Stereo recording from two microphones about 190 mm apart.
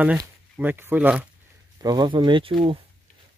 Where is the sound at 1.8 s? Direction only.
20° right (ahead or behind).